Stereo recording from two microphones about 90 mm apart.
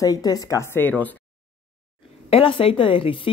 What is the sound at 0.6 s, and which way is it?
Speech, 20° left (ahead or behind).